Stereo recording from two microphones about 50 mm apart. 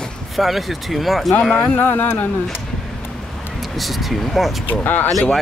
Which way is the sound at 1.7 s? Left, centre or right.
Left.